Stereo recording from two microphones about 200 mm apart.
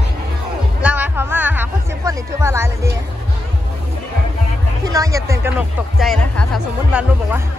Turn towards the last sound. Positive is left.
turn(degrees=-5)  # may be behind; listen again after turning